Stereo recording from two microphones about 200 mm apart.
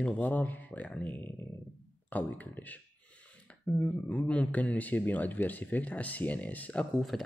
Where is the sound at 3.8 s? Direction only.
5° left (ahead or behind).